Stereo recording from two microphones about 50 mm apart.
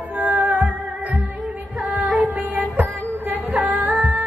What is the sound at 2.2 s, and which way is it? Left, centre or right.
Female singing, right.